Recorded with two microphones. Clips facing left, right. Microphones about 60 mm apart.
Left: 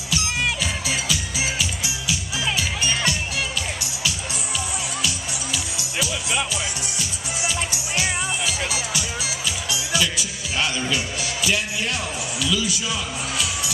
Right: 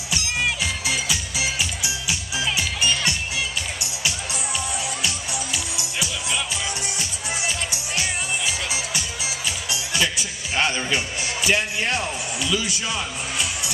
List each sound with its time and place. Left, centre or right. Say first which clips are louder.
1.6 s music: even; right
5.0 s music: even; right
7.0 s music: even; right
11.4 s a man's voice: right 2 dB; right